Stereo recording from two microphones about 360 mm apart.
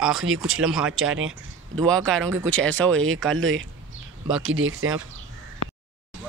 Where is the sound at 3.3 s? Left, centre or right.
Right.